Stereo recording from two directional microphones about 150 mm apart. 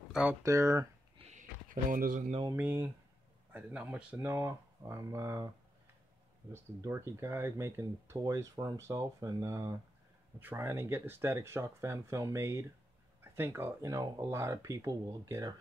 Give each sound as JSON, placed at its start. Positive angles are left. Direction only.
{"t": 0.1, "sound": "speech", "side_deg": -5}
{"t": 0.4, "sound": "speech", "side_deg": -20}
{"t": 1.1, "sound": "a sound", "side_deg": -50}
{"t": 2.5, "sound": "speech", "side_deg": -15}
{"t": 6.5, "sound": "speech", "side_deg": -15}